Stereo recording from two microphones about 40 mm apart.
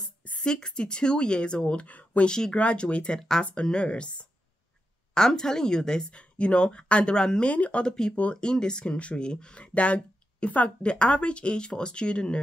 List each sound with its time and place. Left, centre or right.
0.4 s speech: centre
1.9 s speech: left
2.2 s a woman's voice: centre
2.5 s speech: left
5.1 s a woman's voice: centre
6.0 s speech: left
7.2 s a woman's voice: centre
7.4 s speech: left
7.8 s a woman's voice: centre